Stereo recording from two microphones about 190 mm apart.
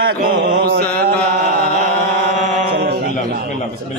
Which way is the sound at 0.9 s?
55° right (ahead or behind).